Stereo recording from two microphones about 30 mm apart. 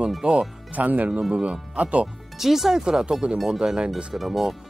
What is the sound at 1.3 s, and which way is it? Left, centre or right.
Speech, right.